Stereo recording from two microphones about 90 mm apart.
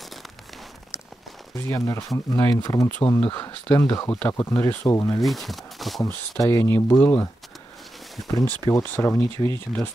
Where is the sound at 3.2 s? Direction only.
20° left (ahead or behind).